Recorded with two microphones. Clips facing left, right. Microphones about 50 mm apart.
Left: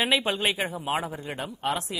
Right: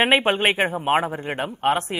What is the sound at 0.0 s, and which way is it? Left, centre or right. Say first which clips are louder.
Speech: right 7 dB; right.